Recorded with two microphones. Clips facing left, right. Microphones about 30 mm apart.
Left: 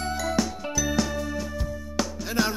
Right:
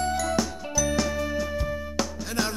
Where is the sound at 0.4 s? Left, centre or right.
Centre.